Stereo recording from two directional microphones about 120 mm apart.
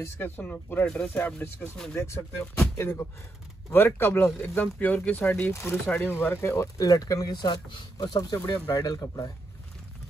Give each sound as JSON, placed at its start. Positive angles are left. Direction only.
{"t": 0.0, "sound": "speech", "side_deg": 15}